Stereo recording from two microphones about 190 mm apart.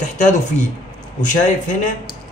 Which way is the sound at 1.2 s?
40° left (ahead or behind).